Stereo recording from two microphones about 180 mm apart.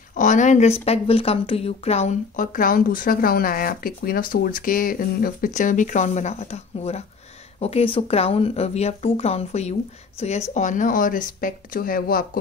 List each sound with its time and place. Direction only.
0.1 s speech: 45° left (ahead or behind)